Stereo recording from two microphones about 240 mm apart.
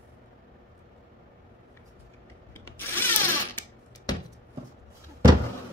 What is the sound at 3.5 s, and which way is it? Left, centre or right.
Music, centre.